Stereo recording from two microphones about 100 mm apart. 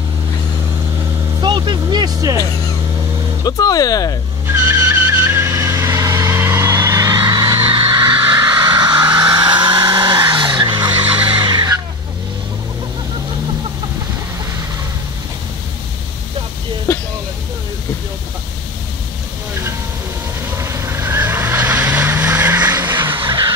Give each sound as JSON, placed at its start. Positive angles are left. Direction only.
{"t": 1.4, "sound": "speech", "side_deg": -50}
{"t": 3.4, "sound": "speech", "side_deg": 40}
{"t": 4.6, "sound": "vehicle", "side_deg": -20}
{"t": 20.5, "sound": "vehicle", "side_deg": -25}